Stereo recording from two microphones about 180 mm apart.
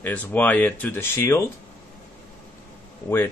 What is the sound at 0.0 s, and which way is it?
Speech, 10° left (ahead or behind).